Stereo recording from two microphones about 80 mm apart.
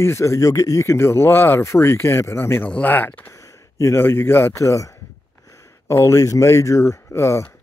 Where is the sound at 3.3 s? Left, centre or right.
Left.